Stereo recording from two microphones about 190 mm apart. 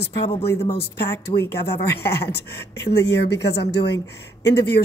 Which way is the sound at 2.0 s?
60° left (ahead or behind).